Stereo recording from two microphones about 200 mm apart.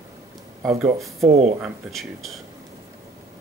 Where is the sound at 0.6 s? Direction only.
15° right (ahead or behind).